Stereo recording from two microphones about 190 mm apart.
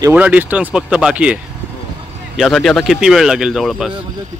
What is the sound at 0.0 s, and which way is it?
A man's voice, 10° right (ahead or behind).